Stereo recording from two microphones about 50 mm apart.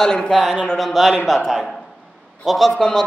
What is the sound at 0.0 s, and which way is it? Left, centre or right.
Speech, centre.